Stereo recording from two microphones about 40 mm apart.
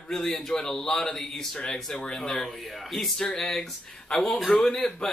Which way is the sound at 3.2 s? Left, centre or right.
Centre.